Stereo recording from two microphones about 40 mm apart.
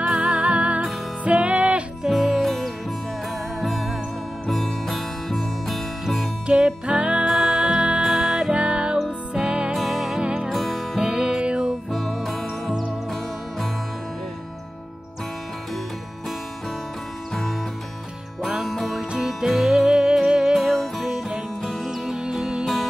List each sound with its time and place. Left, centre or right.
0.0 s music: right
2.0 s music: centre
3.6 s music: centre
6.4 s music: right
7.2 s music: centre
7.5 s music: right
9.8 s music: centre
10.2 s music: right
10.5 s music: centre
11.0 s music: right
11.9 s music: centre
17.3 s music: centre
18.6 s music: centre
22.1 s music: centre